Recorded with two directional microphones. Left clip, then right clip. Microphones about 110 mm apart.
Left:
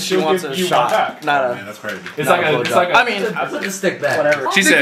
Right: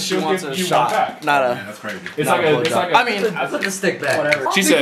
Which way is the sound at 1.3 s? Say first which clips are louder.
Right 1 dB; 20° right (ahead or behind).